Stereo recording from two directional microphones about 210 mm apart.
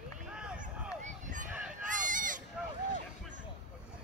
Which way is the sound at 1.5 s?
5° right (ahead or behind).